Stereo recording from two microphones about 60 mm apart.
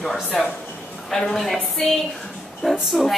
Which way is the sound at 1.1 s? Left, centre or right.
Centre.